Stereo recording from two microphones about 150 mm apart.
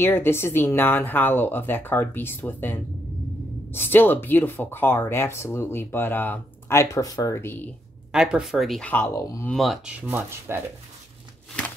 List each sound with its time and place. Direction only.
0.0 s speech: 15° left (ahead or behind)
8.1 s speech: 5° right (ahead or behind)
8.9 s speech: 20° left (ahead or behind)
9.5 s speech: centre (ahead or behind)